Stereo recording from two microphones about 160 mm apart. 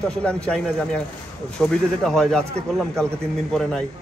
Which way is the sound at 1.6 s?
Centre (ahead or behind).